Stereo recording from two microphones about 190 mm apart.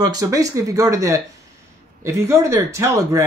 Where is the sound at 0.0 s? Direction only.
20° right (ahead or behind).